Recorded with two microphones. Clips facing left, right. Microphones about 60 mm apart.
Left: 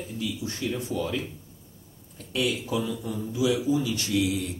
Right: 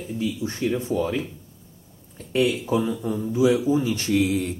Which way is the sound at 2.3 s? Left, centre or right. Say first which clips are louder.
Right 6 dB; right.